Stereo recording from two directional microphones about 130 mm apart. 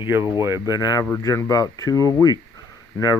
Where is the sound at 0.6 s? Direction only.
30° left (ahead or behind).